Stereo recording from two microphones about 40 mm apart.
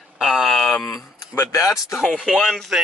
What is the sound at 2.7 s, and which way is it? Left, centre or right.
Speech, centre.